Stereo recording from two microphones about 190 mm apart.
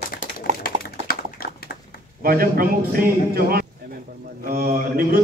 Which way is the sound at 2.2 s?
50° right (ahead or behind).